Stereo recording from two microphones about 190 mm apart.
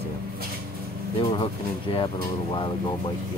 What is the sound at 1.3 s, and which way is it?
Speech, 30° left (ahead or behind).